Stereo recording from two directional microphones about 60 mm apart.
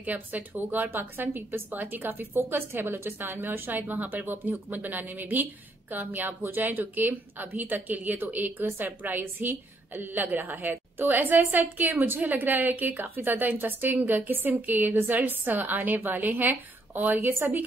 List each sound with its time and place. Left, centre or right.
0.0 s a woman's voice: right